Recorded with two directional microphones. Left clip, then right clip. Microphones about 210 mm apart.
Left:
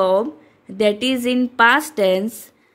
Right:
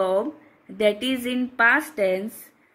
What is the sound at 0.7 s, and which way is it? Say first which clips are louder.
Speech: left 4 dB; 45° left (ahead or behind).